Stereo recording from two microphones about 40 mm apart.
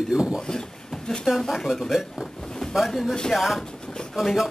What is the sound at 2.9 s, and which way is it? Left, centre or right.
A woman's voice, centre.